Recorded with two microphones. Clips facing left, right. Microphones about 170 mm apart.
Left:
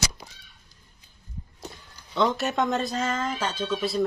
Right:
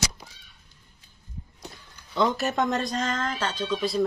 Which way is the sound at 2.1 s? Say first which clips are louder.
Even; centre (ahead or behind).